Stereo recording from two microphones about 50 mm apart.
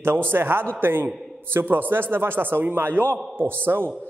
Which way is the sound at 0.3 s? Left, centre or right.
Right.